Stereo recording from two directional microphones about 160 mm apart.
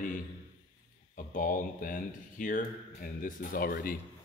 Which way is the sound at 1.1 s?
55° left (ahead or behind).